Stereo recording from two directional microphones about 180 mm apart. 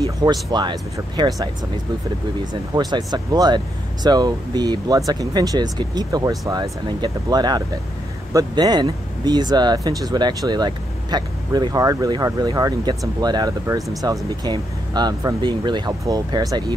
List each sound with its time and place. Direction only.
0.2 s speech: 25° right (ahead or behind)
2.7 s speech: 20° right (ahead or behind)